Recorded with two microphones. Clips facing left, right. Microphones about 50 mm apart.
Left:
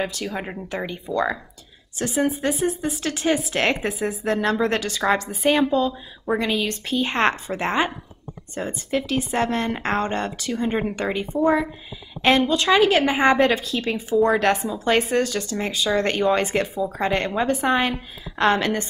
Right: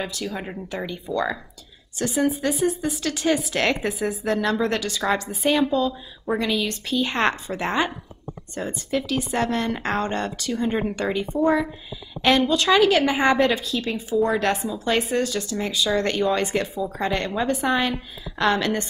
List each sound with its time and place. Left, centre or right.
0.0 s speech: left
0.3 s a woman's voice: left
7.2 s a woman's voice: left
9.0 s a woman's voice: left
10.6 s a woman's voice: centre
11.3 s speech: centre
12.2 s a woman's voice: left